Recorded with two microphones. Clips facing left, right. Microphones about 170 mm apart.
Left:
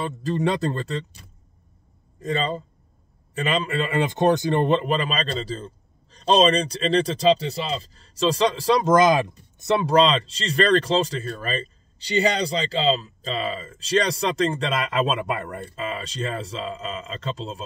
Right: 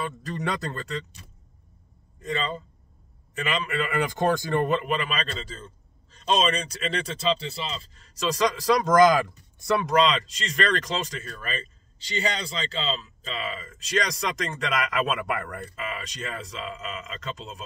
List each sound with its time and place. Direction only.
0.0 s a man's voice: 25° left (ahead or behind)
2.1 s a man's voice: 35° left (ahead or behind)